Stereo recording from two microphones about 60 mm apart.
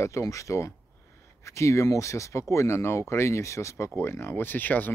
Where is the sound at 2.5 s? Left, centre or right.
Left.